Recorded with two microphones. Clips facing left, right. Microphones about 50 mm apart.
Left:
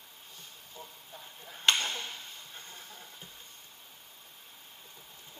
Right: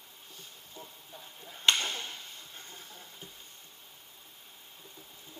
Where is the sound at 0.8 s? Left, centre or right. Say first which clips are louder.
Left 2 dB; centre.